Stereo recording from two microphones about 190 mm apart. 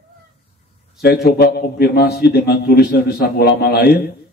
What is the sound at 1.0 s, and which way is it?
A man's voice, 55° left (ahead or behind).